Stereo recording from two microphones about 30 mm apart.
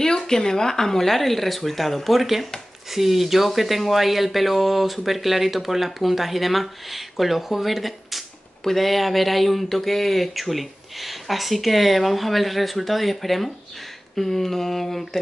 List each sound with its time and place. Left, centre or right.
0.0 s speech: centre